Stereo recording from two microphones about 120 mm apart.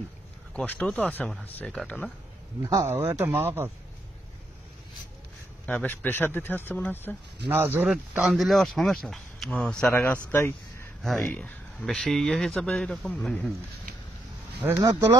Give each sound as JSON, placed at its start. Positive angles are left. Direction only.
{"t": 0.6, "sound": "speech", "side_deg": 5}
{"t": 2.6, "sound": "speech", "side_deg": -30}
{"t": 2.9, "sound": "a man's voice", "side_deg": -20}
{"t": 5.7, "sound": "speech", "side_deg": 15}
{"t": 7.4, "sound": "speech", "side_deg": -15}
{"t": 7.9, "sound": "speech", "side_deg": -5}
{"t": 11.0, "sound": "speech", "side_deg": 0}
{"t": 14.8, "sound": "speech", "side_deg": -35}